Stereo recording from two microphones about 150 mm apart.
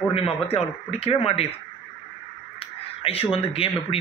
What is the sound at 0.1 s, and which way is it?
A man's voice, 40° left (ahead or behind).